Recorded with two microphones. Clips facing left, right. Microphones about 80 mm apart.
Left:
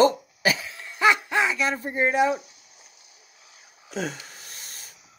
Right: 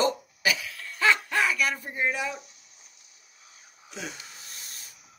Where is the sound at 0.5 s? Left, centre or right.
Left.